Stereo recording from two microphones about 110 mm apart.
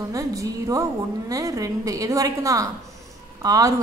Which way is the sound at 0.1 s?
30° right (ahead or behind).